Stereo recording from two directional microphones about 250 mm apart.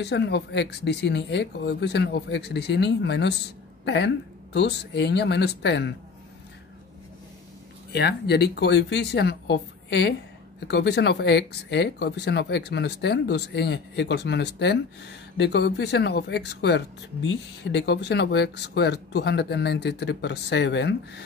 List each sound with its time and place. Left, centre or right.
0.0 s speech: left
7.9 s speech: left